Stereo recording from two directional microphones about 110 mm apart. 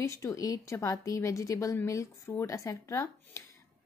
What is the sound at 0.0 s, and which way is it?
Speech, 25° left (ahead or behind).